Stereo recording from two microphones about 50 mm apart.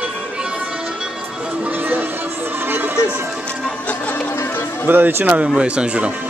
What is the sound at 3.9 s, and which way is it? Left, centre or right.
Music, left.